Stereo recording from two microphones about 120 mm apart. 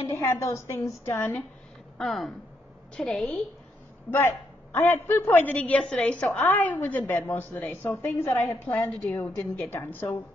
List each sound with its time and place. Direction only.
0.1 s a woman's voice: 25° left (ahead or behind)
2.0 s speech: centre (ahead or behind)
4.7 s a woman's voice: 20° left (ahead or behind)